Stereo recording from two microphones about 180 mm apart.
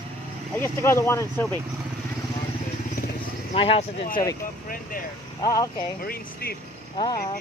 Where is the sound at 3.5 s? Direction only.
30° left (ahead or behind).